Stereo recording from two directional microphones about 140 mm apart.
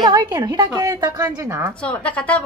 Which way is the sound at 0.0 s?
25° right (ahead or behind).